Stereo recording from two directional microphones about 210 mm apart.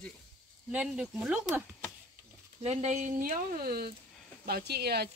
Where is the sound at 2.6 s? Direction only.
30° right (ahead or behind); by 5.1 s 50° right (ahead or behind).